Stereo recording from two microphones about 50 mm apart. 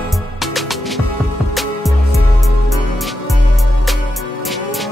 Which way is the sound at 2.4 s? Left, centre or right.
Centre.